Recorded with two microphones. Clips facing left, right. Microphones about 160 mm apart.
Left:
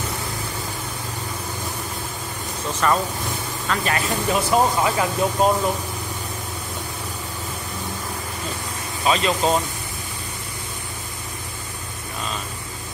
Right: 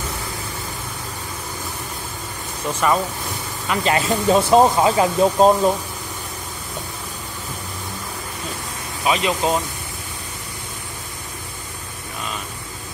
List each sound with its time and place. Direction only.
2.7 s speech: 10° right (ahead or behind)
3.6 s speech: 20° right (ahead or behind)
9.0 s speech: 15° right (ahead or behind)